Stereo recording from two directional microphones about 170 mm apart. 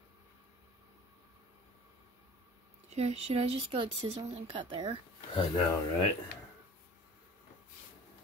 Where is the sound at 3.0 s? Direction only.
40° right (ahead or behind).